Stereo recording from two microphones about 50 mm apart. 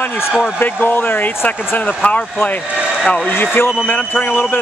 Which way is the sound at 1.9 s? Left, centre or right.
Left.